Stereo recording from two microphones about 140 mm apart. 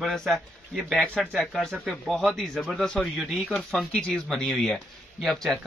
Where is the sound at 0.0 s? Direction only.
Centre (ahead or behind).